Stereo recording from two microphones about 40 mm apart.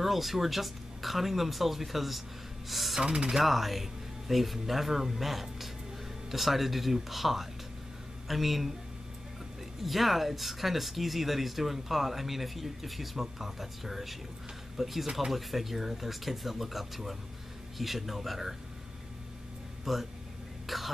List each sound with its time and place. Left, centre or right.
0.0 s speech: centre
3.0 s speech: centre
9.8 s speech: centre
19.8 s speech: centre